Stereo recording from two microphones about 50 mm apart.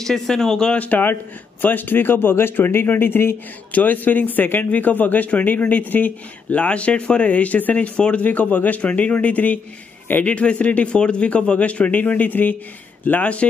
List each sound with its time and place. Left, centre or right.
0.0 s speech: centre
0.7 s a man's voice: left
3.7 s a man's voice: left